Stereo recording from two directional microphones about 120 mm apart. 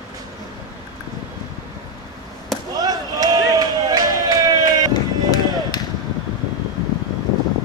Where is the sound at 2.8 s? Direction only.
35° right (ahead or behind).